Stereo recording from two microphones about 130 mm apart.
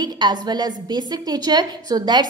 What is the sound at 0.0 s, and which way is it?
A woman's voice, 30° right (ahead or behind).